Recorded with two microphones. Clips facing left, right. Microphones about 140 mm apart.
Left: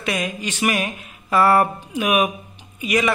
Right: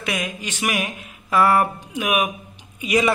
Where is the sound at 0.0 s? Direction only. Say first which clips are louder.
Left 2 dB; 10° right (ahead or behind).